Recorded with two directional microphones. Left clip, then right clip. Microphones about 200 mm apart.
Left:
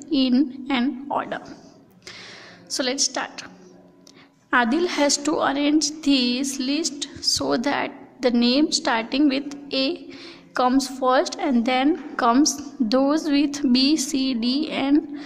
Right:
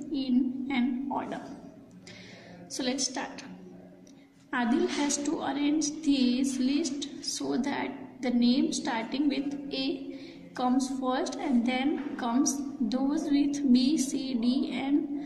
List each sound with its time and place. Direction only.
0.1 s a woman's voice: 45° left (ahead or behind)
2.7 s a woman's voice: 45° left (ahead or behind)
4.5 s a woman's voice: 45° left (ahead or behind)